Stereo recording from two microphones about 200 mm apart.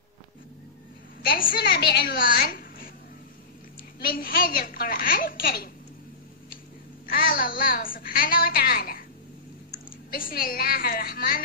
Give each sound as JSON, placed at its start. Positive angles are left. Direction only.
{"t": 1.2, "sound": "a child's voice", "side_deg": 45}
{"t": 4.0, "sound": "a child's voice", "side_deg": 45}
{"t": 7.1, "sound": "a child's voice", "side_deg": 45}
{"t": 10.1, "sound": "a child's voice", "side_deg": 45}